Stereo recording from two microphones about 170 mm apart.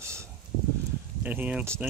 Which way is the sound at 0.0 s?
15° right (ahead or behind).